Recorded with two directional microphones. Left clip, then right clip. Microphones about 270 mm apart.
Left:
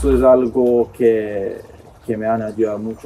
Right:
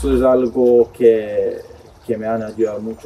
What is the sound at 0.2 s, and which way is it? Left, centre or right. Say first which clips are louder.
Speech: left 1 dB; centre.